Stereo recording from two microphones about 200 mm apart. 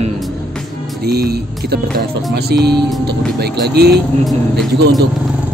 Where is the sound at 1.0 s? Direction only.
55° right (ahead or behind).